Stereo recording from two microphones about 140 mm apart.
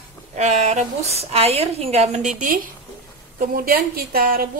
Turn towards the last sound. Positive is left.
turn(degrees=-90)